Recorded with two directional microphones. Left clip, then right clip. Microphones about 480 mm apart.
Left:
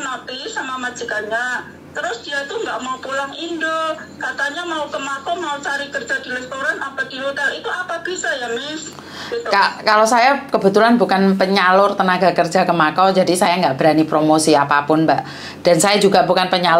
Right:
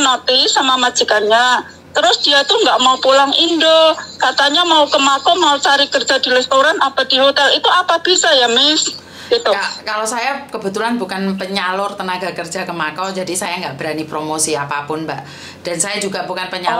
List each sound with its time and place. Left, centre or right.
0.0 s a woman's voice: right
9.5 s a woman's voice: centre